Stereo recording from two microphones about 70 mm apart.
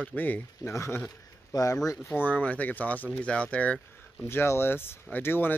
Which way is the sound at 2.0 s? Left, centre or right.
Left.